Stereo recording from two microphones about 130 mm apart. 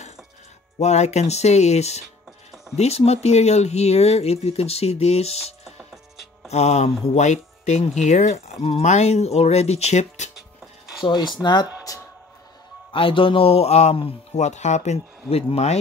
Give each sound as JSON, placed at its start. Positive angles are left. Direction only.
{"t": 0.7, "sound": "speech", "side_deg": 60}
{"t": 6.5, "sound": "speech", "side_deg": 60}
{"t": 10.3, "sound": "music", "side_deg": 0}
{"t": 11.1, "sound": "speech", "side_deg": 35}
{"t": 12.9, "sound": "speech", "side_deg": 40}